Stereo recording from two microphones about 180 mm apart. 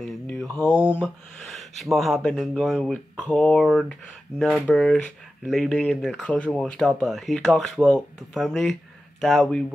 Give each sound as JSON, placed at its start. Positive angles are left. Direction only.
{"t": 0.0, "sound": "mantra", "side_deg": 5}
{"t": 0.9, "sound": "speech", "side_deg": 0}